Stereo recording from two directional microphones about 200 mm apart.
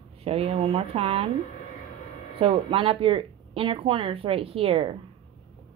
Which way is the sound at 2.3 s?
25° right (ahead or behind).